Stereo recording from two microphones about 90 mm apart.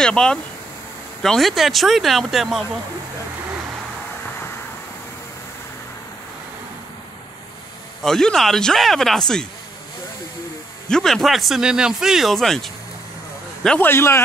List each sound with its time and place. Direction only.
0.0 s speech: 10° left (ahead or behind)
8.0 s speech: 5° left (ahead or behind)
10.9 s speech: 5° left (ahead or behind)
13.7 s a man's voice: 25° left (ahead or behind)